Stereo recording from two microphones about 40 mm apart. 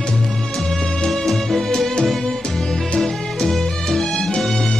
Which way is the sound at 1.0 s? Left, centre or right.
Centre.